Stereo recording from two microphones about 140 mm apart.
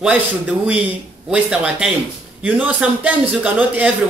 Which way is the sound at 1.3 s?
5° right (ahead or behind).